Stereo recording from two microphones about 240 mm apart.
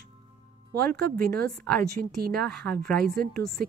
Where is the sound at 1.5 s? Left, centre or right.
Centre.